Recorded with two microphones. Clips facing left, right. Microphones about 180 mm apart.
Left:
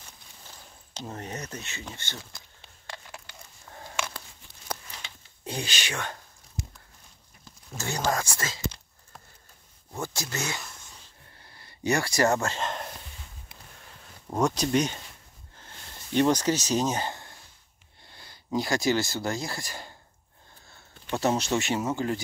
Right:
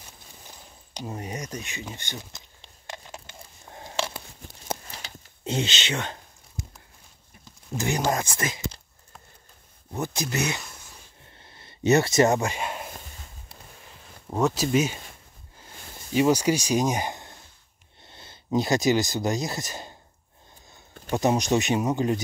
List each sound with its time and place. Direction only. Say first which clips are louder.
0.9 s speech: right 3 dB; 10° right (ahead or behind)
2.9 s a sound: right 3 dB; 20° right (ahead or behind)
7.7 s speech: right 3 dB; 15° right (ahead or behind)
9.9 s speech: right 5 dB; 20° right (ahead or behind)
11.3 s a sound: right 2 dB; 25° right (ahead or behind)
14.3 s speech: right 2 dB; 5° right (ahead or behind)
15.5 s a sound: right 3 dB; 5° right (ahead or behind)
18.0 s speech: right 4 dB; 20° right (ahead or behind)
21.1 s speech: right 3 dB; 15° right (ahead or behind)